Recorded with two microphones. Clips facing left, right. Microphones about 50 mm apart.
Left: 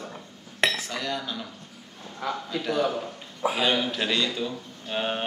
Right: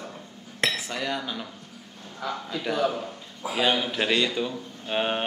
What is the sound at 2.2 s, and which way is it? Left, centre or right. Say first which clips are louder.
Speech: left 1 dB; centre.